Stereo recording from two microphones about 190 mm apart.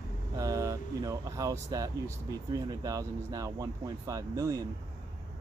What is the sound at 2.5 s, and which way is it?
Speech, 20° right (ahead or behind).